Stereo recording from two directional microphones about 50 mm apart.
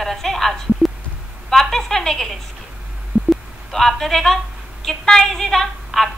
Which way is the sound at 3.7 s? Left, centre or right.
Centre.